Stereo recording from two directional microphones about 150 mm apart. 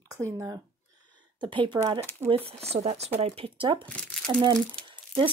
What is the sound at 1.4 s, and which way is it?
Speech, 35° right (ahead or behind).